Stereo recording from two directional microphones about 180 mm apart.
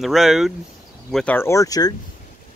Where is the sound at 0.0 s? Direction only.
Centre (ahead or behind); by 2.0 s 20° left (ahead or behind).